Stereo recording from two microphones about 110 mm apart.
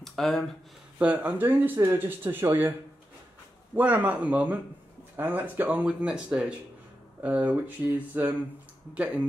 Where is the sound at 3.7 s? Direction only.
15° right (ahead or behind).